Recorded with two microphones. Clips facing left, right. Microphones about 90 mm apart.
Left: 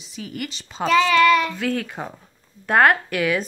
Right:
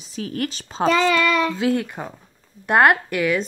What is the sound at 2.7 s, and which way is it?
Speech, 10° right (ahead or behind).